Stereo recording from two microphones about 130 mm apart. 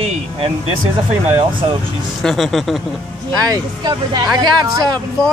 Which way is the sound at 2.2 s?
Centre (ahead or behind).